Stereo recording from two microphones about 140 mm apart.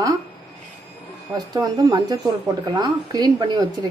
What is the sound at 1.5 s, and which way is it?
Speech, 25° right (ahead or behind).